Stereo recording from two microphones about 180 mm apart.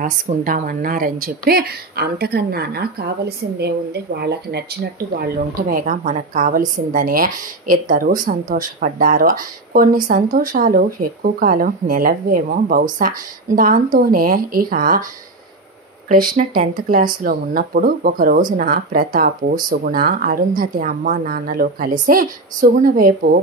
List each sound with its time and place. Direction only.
0.0 s a woman's voice: 50° right (ahead or behind)
16.1 s speech: 50° right (ahead or behind)